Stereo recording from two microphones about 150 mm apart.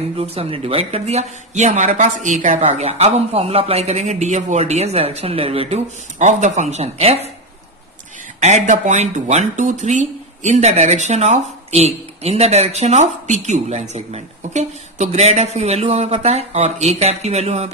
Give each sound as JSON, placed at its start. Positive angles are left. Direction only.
{"t": 0.2, "sound": "speech", "side_deg": -40}
{"t": 8.4, "sound": "speech", "side_deg": -50}